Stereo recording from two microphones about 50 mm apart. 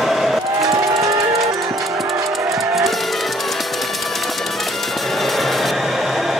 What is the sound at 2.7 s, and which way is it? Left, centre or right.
Music, centre.